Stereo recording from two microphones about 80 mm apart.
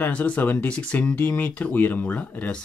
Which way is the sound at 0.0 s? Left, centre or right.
Centre.